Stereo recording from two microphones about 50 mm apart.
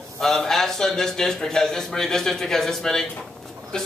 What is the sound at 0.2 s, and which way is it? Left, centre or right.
A man's voice, centre.